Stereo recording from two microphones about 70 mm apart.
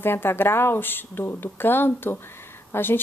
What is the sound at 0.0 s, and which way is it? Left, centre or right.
A woman's voice, left.